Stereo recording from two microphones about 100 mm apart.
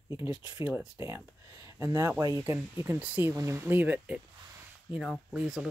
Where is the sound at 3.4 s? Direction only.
30° right (ahead or behind).